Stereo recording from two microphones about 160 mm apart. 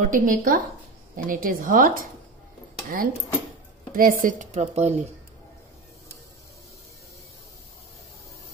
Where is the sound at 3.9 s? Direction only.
60° right (ahead or behind); by 5.0 s 45° right (ahead or behind).